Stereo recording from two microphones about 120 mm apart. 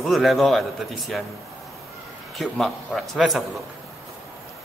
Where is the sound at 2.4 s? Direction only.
Centre (ahead or behind).